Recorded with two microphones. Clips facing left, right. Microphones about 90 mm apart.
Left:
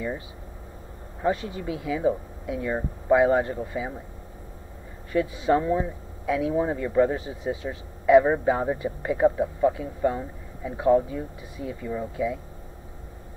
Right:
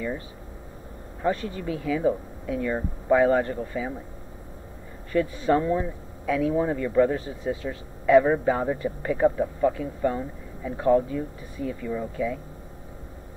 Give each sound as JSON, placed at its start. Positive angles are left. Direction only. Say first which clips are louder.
{"t": 1.2, "sound": "a man's voice", "louder": "even", "side_deg": 20}
{"t": 5.1, "sound": "a man's voice", "louder": "even", "side_deg": 15}